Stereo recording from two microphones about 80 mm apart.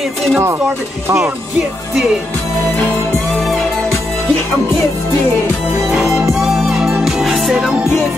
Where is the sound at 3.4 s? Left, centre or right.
Centre.